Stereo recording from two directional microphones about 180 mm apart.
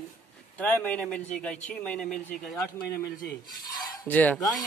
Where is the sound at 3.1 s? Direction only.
55° left (ahead or behind).